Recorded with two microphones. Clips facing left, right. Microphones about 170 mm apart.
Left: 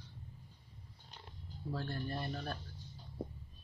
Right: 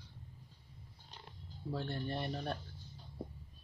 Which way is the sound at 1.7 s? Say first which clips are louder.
Right 1 dB; 25° right (ahead or behind).